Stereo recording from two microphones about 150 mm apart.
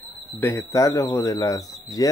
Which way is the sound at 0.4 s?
15° left (ahead or behind).